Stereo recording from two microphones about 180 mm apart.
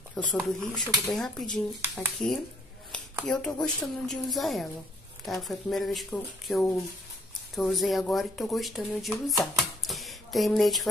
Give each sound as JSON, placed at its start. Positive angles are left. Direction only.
{"t": 0.2, "sound": "speech", "side_deg": 0}
{"t": 9.4, "sound": "typewriter", "side_deg": 0}